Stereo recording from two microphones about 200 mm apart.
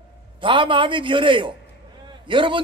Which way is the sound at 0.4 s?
25° right (ahead or behind).